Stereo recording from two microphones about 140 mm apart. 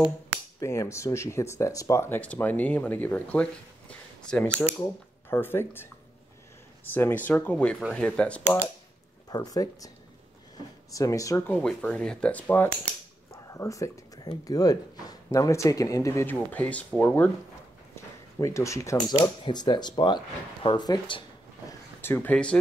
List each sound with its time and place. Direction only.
0.6 s speech: 20° left (ahead or behind)
9.3 s speech: 25° left (ahead or behind)
10.9 s speech: 25° left (ahead or behind)
11.5 s speech: 5° left (ahead or behind)
13.5 s speech: 25° left (ahead or behind)
18.4 s speech: 20° left (ahead or behind)
21.6 s a sound: 15° left (ahead or behind)